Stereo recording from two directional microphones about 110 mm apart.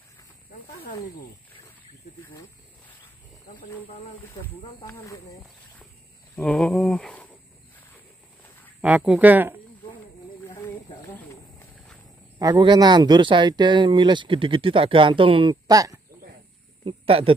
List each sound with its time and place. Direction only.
4.2 s speech: 20° left (ahead or behind)
6.3 s speech: 10° left (ahead or behind)
8.8 s speech: 10° right (ahead or behind)
10.4 s a sound: 20° left (ahead or behind)
11.7 s a sound: 5° left (ahead or behind)
12.4 s speech: 35° right (ahead or behind)
15.6 s speech: 35° right (ahead or behind)
16.8 s speech: 60° right (ahead or behind)